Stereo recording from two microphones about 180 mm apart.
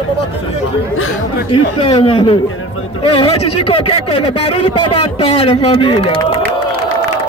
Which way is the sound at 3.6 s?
30° left (ahead or behind).